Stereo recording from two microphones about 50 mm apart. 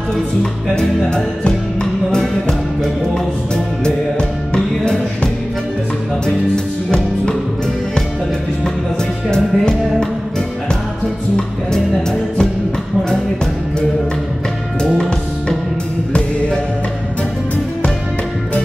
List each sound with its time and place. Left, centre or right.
0.7 s music: centre
6.2 s music: centre
11.3 s music: centre